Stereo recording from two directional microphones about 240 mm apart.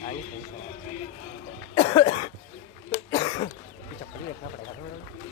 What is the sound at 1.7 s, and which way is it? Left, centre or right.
Cough, left.